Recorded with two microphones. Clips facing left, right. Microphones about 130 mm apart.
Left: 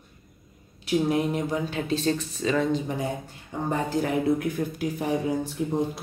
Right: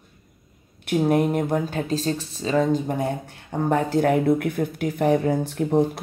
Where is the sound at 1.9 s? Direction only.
35° right (ahead or behind).